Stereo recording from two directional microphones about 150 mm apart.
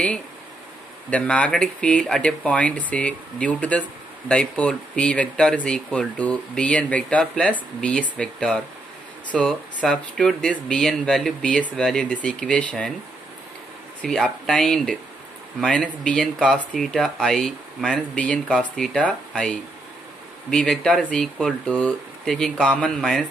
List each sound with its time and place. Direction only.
1.1 s speech: 5° left (ahead or behind)
14.0 s speech: 5° left (ahead or behind)